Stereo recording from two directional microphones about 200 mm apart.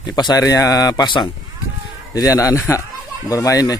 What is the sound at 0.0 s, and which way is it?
Speech, 20° left (ahead or behind).